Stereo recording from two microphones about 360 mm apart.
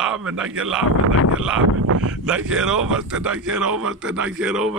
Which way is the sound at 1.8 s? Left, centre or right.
Right.